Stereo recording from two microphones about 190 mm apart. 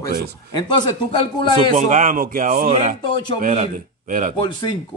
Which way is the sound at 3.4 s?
40° right (ahead or behind).